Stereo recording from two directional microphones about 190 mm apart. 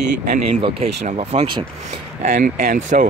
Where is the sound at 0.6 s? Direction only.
35° right (ahead or behind).